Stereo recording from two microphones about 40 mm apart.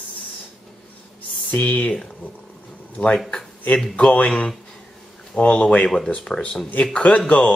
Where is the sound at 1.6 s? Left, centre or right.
Left.